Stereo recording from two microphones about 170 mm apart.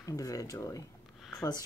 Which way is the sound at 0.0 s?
20° left (ahead or behind).